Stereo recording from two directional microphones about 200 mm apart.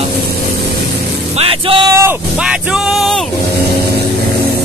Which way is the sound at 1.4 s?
25° right (ahead or behind).